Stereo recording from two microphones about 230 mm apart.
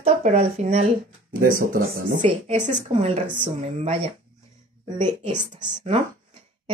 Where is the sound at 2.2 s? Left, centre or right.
Right.